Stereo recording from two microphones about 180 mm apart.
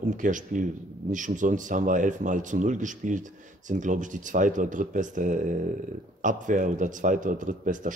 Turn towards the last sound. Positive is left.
turn(degrees=-45)  # may be behind; listen again after turning